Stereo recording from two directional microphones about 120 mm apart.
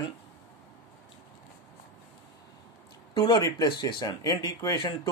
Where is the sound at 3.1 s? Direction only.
35° left (ahead or behind).